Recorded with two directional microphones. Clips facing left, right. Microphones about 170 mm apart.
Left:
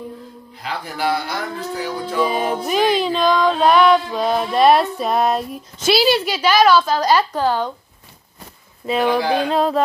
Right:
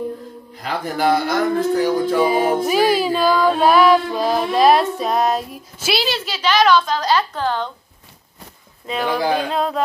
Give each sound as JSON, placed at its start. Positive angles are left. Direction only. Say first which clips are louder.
{"t": 0.6, "sound": "speech", "louder": "right 4 dB", "side_deg": -45}
{"t": 2.2, "sound": "music", "louder": "right 4 dB", "side_deg": -5}
{"t": 6.0, "sound": "a woman's voice", "louder": "left 5 dB", "side_deg": 10}
{"t": 8.8, "sound": "music", "louder": "left 2 dB", "side_deg": 5}